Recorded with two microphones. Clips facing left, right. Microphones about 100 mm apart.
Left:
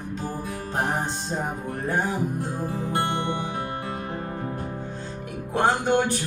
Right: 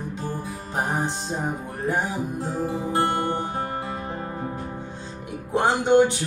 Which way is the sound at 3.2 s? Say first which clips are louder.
Right 2 dB; 40° right (ahead or behind).